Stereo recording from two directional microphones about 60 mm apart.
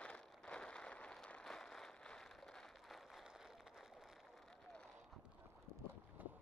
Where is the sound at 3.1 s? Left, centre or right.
Centre.